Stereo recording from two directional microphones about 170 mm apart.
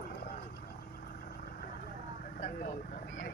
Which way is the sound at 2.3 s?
50° left (ahead or behind).